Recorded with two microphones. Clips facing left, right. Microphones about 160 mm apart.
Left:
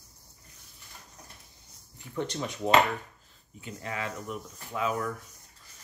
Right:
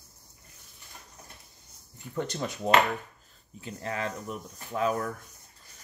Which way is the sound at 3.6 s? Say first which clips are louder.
Right 2 dB; 35° right (ahead or behind).